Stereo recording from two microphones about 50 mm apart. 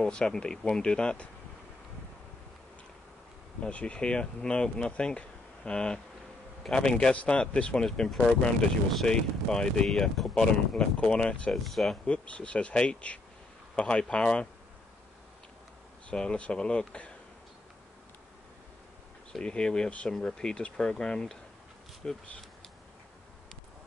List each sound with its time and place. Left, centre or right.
0.0 s speech: centre
3.6 s speech: left
11.5 s speech: centre
12.1 s speech: left
16.1 s speech: left
19.4 s speech: centre